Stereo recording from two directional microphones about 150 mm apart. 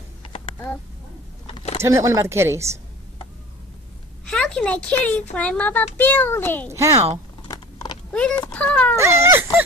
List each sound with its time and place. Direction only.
1.5 s a sound: 40° left (ahead or behind)
1.8 s speech: 20° right (ahead or behind)
4.3 s a child's voice: 5° left (ahead or behind)
6.7 s a woman's voice: 20° right (ahead or behind)
7.4 s typing: 25° left (ahead or behind)
8.1 s a child's voice: 5° left (ahead or behind)
8.9 s speech: 20° right (ahead or behind)